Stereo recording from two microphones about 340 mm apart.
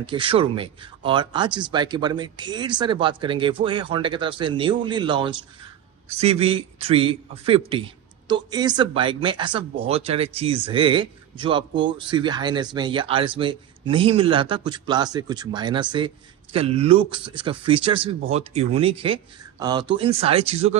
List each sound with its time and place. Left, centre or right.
0.0 s speech: centre